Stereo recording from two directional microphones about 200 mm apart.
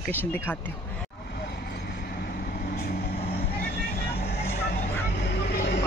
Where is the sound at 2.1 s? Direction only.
50° left (ahead or behind).